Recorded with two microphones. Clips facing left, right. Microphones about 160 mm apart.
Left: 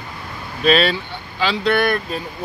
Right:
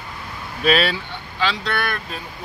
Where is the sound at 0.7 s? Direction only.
5° right (ahead or behind).